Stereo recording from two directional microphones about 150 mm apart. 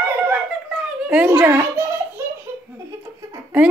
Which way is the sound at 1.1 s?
10° right (ahead or behind).